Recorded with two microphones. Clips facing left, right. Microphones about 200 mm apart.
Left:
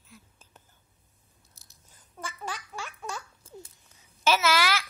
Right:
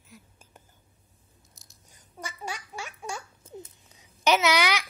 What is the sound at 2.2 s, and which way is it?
A child's voice, 15° right (ahead or behind).